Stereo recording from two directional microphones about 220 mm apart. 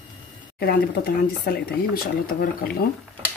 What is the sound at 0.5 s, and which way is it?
Speech, 45° left (ahead or behind).